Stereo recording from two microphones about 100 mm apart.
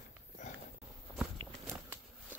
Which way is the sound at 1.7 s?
25° right (ahead or behind).